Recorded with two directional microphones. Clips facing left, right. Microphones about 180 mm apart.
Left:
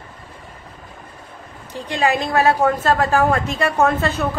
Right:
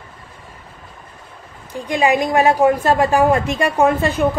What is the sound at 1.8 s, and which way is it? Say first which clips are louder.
A woman's voice: right 3 dB; 10° right (ahead or behind).